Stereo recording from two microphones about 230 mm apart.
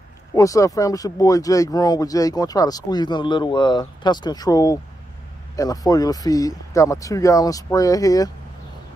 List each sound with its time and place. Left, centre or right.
0.3 s speech: centre